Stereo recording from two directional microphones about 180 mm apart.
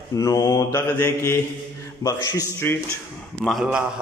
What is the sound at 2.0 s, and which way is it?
Speech, 20° left (ahead or behind).